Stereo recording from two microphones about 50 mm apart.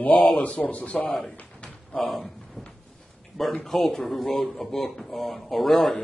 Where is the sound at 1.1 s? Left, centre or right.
Centre.